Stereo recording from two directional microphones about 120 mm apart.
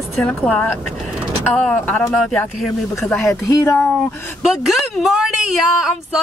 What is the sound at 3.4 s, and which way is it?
Speech, 25° left (ahead or behind).